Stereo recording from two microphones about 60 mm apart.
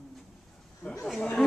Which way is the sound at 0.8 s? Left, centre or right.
Left.